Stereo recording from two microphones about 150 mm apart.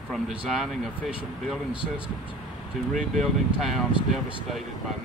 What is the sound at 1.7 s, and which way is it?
Speech, 35° right (ahead or behind).